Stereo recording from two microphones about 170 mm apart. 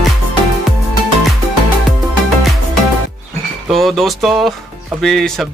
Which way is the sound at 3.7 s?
Centre (ahead or behind).